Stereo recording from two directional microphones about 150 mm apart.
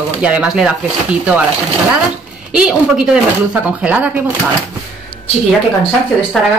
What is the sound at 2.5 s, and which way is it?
A woman's voice, 5° right (ahead or behind).